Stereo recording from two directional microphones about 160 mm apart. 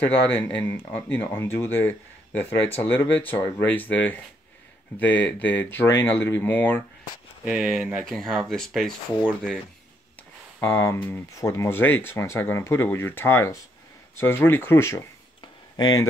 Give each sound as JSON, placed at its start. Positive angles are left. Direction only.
{"t": 0.3, "sound": "speech", "side_deg": 10}
{"t": 7.4, "sound": "speech", "side_deg": 0}
{"t": 10.6, "sound": "speech", "side_deg": 15}
{"t": 15.4, "sound": "a sound", "side_deg": 25}